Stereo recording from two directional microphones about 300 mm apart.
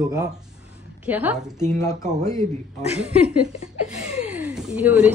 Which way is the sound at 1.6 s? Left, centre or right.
Centre.